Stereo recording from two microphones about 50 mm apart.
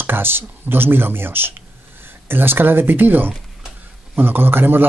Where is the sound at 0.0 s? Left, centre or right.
Right.